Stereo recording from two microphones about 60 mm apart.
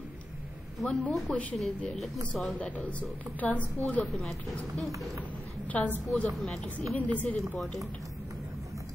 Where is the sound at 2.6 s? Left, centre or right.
Left.